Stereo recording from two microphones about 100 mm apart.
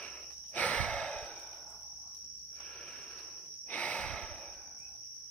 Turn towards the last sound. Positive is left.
turn(degrees=15)  # may be behind; listen again after turning